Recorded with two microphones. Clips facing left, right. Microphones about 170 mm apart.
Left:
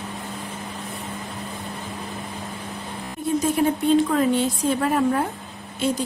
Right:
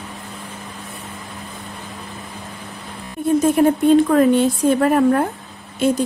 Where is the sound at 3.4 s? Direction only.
55° right (ahead or behind).